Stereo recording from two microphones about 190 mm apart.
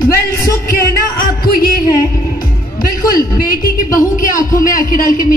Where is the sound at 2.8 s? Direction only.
50° left (ahead or behind).